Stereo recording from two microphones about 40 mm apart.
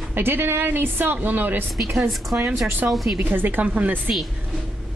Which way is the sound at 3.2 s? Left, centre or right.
Right.